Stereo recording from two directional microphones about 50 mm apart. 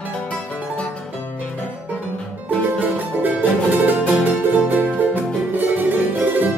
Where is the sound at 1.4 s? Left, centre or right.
Left.